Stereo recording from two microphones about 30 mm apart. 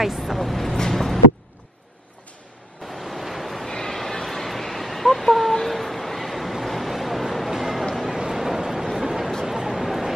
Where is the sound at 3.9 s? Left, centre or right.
Centre.